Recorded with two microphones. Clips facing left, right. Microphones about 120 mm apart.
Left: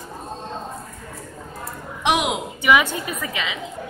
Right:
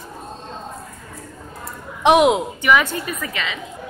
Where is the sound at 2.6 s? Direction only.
10° left (ahead or behind).